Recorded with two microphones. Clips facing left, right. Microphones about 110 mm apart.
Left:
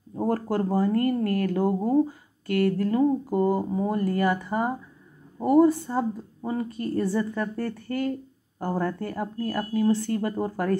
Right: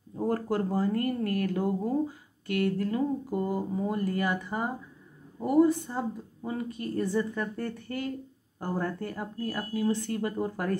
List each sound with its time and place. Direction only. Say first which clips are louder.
0.2 s a woman's voice: left 3 dB; 35° left (ahead or behind)